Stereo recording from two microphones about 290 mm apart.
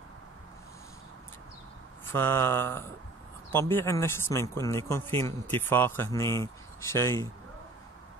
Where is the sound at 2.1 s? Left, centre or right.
Centre.